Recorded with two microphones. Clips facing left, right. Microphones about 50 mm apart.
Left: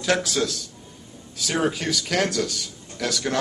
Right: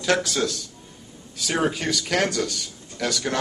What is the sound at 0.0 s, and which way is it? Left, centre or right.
Speech, centre.